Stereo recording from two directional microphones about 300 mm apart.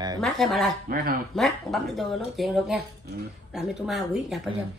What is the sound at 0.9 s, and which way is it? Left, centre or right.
Speech, right.